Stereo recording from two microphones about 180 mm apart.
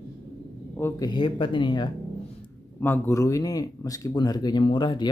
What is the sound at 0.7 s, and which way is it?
Speech, 15° left (ahead or behind).